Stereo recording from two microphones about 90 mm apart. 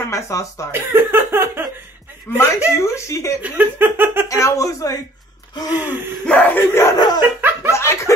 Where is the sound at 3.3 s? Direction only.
20° right (ahead or behind).